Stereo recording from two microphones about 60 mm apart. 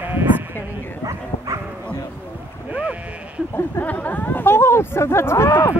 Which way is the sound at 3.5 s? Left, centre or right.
Left.